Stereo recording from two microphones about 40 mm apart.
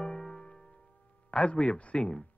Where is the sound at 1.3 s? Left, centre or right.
Left.